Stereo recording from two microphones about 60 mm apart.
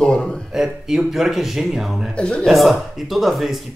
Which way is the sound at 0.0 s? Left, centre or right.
Centre.